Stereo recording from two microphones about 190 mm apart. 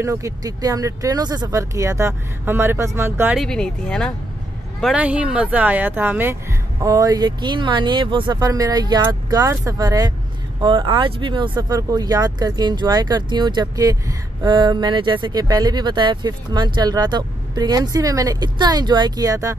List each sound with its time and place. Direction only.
0.0 s speech: 15° right (ahead or behind)
3.3 s speech: 5° left (ahead or behind); by 19.5 s 20° right (ahead or behind)